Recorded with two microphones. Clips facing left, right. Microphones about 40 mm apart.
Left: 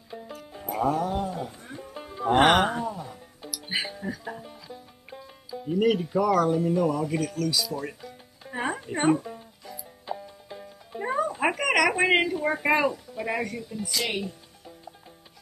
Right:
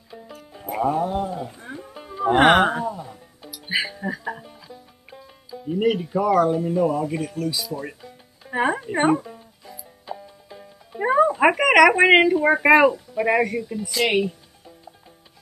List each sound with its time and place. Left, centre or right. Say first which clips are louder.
0.1 s music: left 1 dB; centre
0.7 s music: right 3 dB; centre
2.3 s speech: right 4 dB; centre
3.4 s music: right 5 dB; right
4.5 s music: even; centre
5.7 s speech: right 2 dB; centre
8.5 s speech: right 7 dB; right
9.2 s music: left 1 dB; centre
11.0 s speech: right 9 dB; right
12.0 s speech: right 8 dB; right
12.6 s speech: right 9 dB; right
13.1 s speech: right 9 dB; right
13.7 s speech: right 3 dB; centre
14.0 s speech: right 13 dB; right